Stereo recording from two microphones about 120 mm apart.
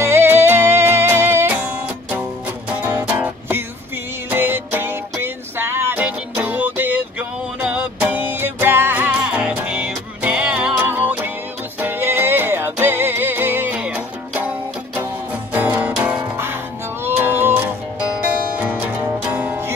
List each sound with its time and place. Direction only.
0.0 s music: 20° right (ahead or behind)
15.5 s music: 15° right (ahead or behind)